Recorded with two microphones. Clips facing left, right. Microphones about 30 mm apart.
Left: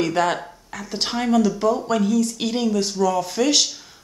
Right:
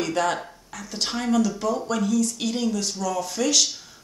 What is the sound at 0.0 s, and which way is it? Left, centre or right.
Speech, left.